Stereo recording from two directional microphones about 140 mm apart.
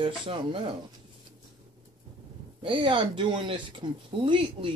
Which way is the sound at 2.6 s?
35° right (ahead or behind).